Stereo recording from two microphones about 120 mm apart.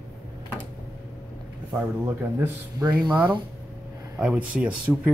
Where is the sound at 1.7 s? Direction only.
20° right (ahead or behind).